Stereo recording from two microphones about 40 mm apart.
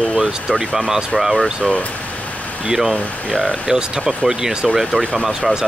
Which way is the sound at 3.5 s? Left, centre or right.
Centre.